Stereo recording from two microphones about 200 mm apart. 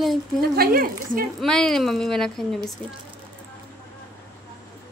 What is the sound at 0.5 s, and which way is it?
Speech, 50° right (ahead or behind).